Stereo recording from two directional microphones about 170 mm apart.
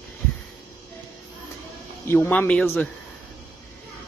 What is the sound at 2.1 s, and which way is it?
Speech, 10° left (ahead or behind).